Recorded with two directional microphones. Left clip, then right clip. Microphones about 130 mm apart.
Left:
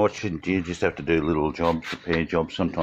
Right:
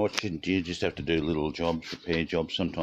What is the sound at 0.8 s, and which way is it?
Speech, 40° right (ahead or behind).